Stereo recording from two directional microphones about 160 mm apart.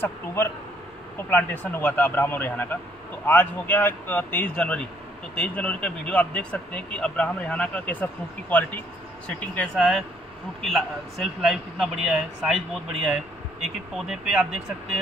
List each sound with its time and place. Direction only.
0.0 s a man's voice: 15° left (ahead or behind); by 14.6 s 5° right (ahead or behind)